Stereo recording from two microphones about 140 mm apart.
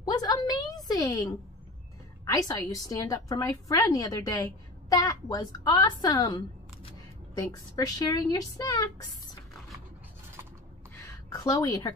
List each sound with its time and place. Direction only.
0.0 s a sound: 25° left (ahead or behind)
2.2 s a woman's voice: 25° left (ahead or behind)
11.2 s a woman's voice: 25° left (ahead or behind)